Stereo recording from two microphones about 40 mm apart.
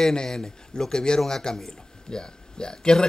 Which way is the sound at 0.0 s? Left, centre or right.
Centre.